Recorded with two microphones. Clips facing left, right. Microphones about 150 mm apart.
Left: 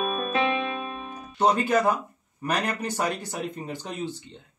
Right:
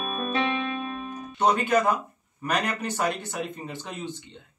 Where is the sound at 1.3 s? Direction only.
10° left (ahead or behind).